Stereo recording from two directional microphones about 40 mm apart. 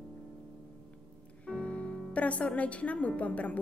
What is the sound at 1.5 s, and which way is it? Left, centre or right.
Speech, left.